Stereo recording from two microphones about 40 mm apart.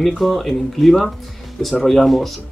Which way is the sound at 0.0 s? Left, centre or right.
Centre.